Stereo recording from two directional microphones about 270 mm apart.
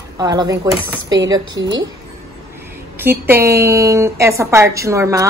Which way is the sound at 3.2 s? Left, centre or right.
Centre.